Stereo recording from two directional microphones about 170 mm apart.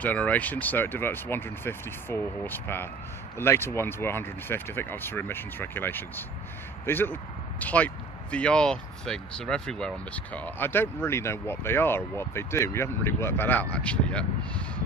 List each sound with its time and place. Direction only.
0.0 s speech: 10° left (ahead or behind)